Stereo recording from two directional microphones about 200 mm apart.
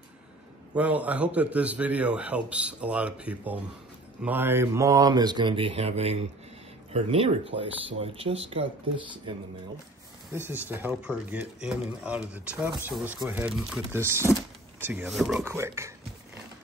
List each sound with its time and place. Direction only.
0.7 s speech: 5° right (ahead or behind); by 8.6 s 30° right (ahead or behind)
10.3 s speech: 10° right (ahead or behind)
13.9 s speech: 15° right (ahead or behind)
15.4 s speech: 15° right (ahead or behind)